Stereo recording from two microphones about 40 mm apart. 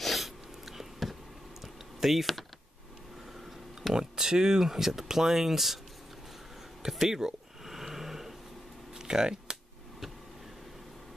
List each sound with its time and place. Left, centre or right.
0.0 s sneeze: centre
2.0 s speech: centre
3.8 s speech: centre
6.9 s a sound: centre
8.9 s typing: centre